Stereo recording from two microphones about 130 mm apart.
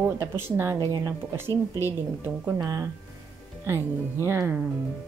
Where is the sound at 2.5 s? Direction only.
30° right (ahead or behind).